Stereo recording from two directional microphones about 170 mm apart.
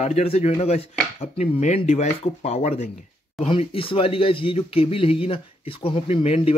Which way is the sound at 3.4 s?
35° left (ahead or behind).